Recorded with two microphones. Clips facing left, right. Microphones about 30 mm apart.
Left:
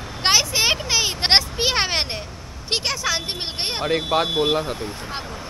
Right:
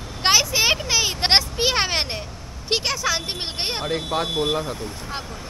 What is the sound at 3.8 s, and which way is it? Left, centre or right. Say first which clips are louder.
Speech: left 6 dB; centre.